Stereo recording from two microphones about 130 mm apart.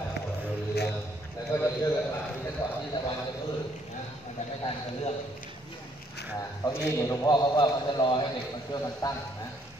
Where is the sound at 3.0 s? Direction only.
40° left (ahead or behind).